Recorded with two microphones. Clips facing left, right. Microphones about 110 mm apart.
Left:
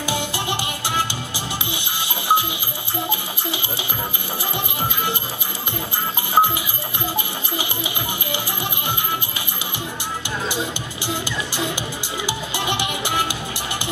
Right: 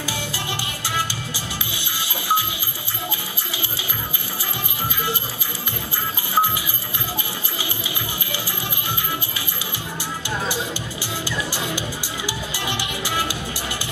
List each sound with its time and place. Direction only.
0.0 s music: 20° left (ahead or behind)
6.3 s goat: 20° left (ahead or behind)
7.5 s music: 20° left (ahead or behind)
11.2 s music: 20° left (ahead or behind)